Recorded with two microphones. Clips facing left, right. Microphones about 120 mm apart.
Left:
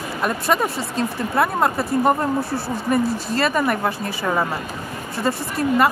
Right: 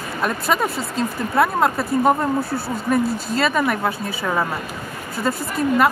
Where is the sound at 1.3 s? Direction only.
Centre (ahead or behind).